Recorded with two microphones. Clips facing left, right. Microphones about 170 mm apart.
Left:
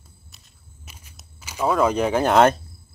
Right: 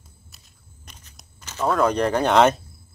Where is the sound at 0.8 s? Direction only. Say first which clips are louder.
Left 1 dB; 5° left (ahead or behind).